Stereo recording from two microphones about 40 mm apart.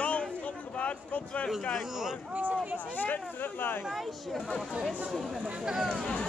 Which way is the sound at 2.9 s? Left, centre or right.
Left.